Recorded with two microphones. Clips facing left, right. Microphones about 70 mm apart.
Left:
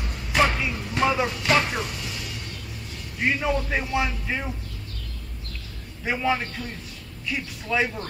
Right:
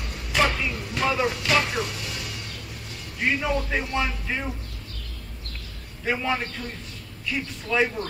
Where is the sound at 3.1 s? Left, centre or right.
Centre.